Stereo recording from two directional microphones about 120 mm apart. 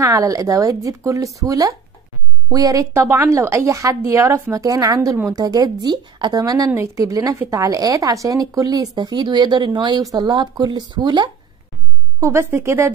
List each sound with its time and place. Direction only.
0.0 s a woman's voice: 30° right (ahead or behind)
12.2 s a woman's voice: 20° right (ahead or behind)